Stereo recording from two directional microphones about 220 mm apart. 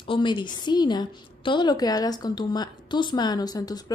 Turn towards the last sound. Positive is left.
turn(degrees=15)  # may be behind; listen again after turning